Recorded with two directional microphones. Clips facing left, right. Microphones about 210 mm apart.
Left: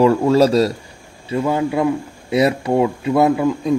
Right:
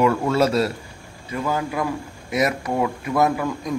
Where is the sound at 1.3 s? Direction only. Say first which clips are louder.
Left 6 dB; 25° left (ahead or behind).